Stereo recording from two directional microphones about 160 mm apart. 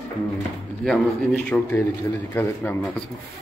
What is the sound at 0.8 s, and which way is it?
Speech, centre (ahead or behind).